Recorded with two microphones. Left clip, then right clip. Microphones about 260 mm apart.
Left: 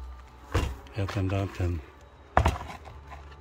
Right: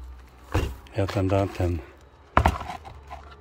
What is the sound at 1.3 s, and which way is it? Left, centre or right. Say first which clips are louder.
Speech: right 8 dB; centre.